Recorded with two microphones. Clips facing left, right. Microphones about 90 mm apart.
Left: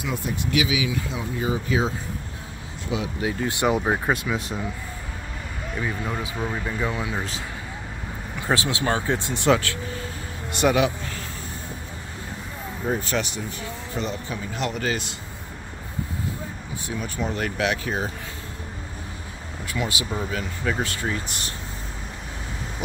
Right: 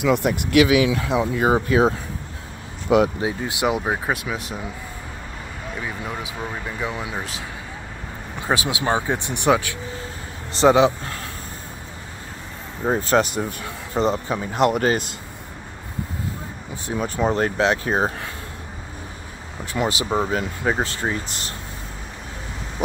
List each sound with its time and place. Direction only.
0.0 s speech: 85° right; by 3.0 s 65° right (ahead or behind)
3.4 s speech: 10° right (ahead or behind)
5.8 s speech: 5° right (ahead or behind)
8.5 s speech: 15° right (ahead or behind)
10.5 s speech: 25° right (ahead or behind)
11.0 s a sound: 45° right (ahead or behind)
12.8 s speech: 40° right (ahead or behind)
13.4 s speech: 55° right (ahead or behind)
13.9 s speech: 40° right (ahead or behind)
16.8 s speech: 40° right (ahead or behind)
19.9 s speech: 40° right (ahead or behind)